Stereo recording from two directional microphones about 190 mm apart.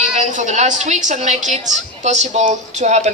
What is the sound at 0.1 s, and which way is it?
A woman's voice, 40° right (ahead or behind).